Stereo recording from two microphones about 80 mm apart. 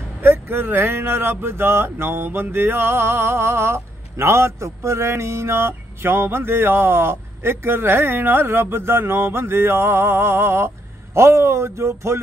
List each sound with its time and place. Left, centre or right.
0.2 s speech: right